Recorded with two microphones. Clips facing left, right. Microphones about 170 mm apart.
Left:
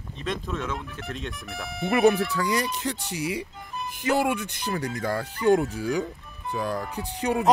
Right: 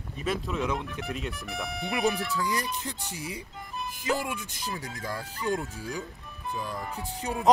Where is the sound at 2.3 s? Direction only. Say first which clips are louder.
Left 4 dB; 75° left (ahead or behind).